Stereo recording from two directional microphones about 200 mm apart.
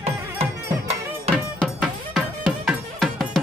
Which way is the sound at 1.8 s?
Centre (ahead or behind).